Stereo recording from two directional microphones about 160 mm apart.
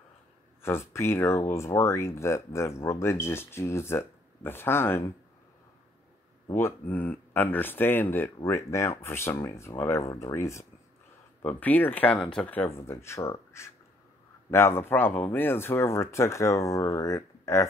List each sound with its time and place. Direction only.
0.6 s speech: 15° left (ahead or behind)
6.5 s speech: 10° left (ahead or behind)